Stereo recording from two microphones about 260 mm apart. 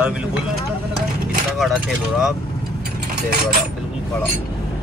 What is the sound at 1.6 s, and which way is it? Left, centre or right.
Speech, centre.